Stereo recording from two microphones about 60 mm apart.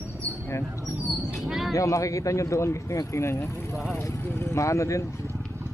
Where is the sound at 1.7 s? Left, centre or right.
Left.